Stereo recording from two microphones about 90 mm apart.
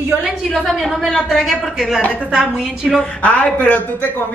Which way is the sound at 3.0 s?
15° left (ahead or behind).